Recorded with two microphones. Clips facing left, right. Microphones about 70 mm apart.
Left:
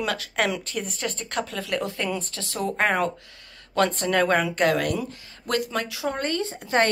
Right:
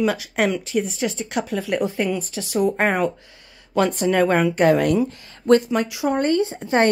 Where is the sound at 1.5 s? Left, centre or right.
Centre.